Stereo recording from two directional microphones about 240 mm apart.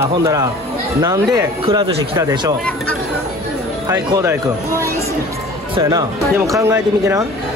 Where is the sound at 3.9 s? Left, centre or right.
Centre.